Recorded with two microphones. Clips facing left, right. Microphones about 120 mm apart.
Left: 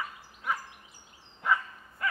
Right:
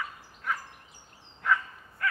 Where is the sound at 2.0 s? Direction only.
15° left (ahead or behind).